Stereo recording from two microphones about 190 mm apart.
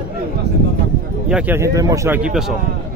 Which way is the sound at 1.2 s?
5° right (ahead or behind).